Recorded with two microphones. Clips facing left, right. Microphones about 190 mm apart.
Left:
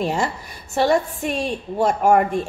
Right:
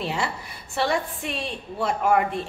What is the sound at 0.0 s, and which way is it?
A woman's voice, 45° left (ahead or behind).